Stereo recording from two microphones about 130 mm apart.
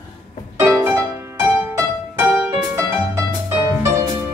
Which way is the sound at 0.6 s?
15° right (ahead or behind).